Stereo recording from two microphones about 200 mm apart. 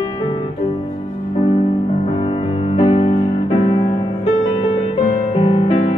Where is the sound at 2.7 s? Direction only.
25° left (ahead or behind).